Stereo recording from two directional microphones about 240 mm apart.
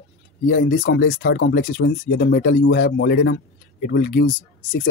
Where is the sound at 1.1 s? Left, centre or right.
Left.